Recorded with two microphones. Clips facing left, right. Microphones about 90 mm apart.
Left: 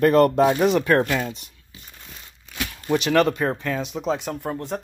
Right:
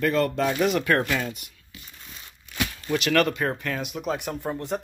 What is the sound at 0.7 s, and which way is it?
Speech, 20° left (ahead or behind).